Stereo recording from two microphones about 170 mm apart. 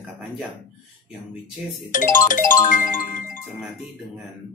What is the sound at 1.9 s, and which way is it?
Music, 50° left (ahead or behind).